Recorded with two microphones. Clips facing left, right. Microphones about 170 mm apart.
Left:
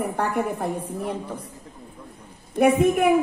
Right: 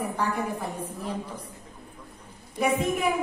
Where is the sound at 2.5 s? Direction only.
60° left (ahead or behind).